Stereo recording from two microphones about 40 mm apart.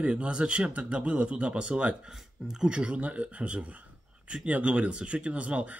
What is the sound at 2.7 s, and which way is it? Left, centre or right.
Speech, right.